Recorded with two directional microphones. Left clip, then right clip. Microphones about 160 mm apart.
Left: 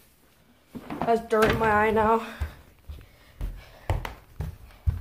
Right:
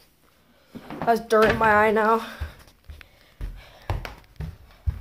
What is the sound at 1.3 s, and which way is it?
Speech, 55° right (ahead or behind).